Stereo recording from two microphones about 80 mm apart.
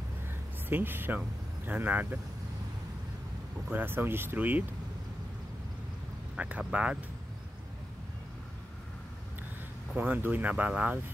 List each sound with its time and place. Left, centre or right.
0.7 s speech: right
3.7 s speech: right
6.3 s speech: centre
9.9 s speech: right